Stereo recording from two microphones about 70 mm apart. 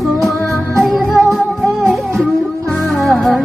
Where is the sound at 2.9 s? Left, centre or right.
Centre.